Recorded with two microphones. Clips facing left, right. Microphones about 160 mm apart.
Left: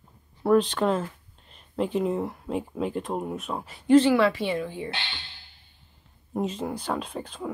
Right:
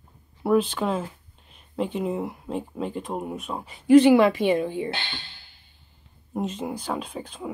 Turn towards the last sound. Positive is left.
turn(degrees=0)  # may be behind; listen again after turning